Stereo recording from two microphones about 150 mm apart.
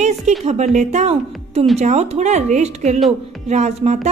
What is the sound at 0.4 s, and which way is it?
A woman's voice, 50° right (ahead or behind).